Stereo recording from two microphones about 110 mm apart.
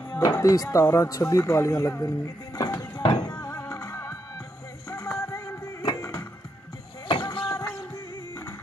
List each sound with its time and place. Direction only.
0.1 s speech: 35° left (ahead or behind)
3.0 s music: 40° left (ahead or behind)
3.4 s music: 25° left (ahead or behind)
5.8 s music: 35° left (ahead or behind)
7.1 s a sound: 45° left (ahead or behind)